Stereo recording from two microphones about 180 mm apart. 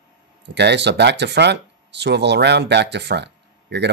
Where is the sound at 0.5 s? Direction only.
70° right (ahead or behind).